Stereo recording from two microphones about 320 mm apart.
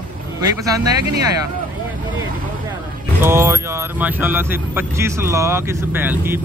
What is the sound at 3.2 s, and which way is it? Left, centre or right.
Speech, centre.